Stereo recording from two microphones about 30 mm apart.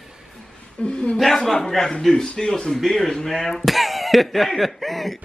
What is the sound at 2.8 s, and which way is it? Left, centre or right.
Speech, centre.